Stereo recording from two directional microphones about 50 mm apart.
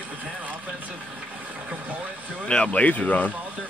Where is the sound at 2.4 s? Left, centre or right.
Left.